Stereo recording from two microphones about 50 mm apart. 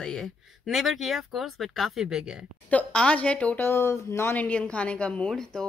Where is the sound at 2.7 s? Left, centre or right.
Left.